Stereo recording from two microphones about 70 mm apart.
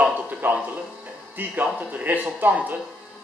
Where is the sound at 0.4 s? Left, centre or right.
Right.